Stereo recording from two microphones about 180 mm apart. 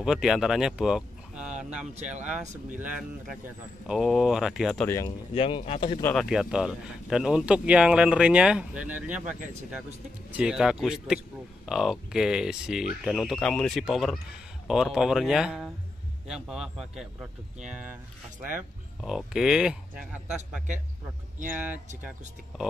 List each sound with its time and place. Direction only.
0.0 s speech: centre (ahead or behind)
4.8 s speech: 15° left (ahead or behind)
5.3 s speech: 30° left (ahead or behind)
6.0 s speech: centre (ahead or behind)
19.0 s speech: 5° right (ahead or behind)